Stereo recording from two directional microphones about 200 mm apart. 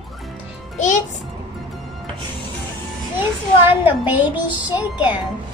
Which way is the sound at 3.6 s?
10° right (ahead or behind).